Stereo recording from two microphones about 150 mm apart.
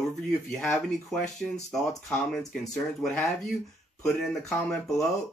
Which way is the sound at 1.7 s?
Centre (ahead or behind).